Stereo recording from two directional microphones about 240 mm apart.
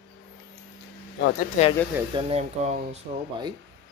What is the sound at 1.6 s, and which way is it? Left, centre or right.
Speech, left.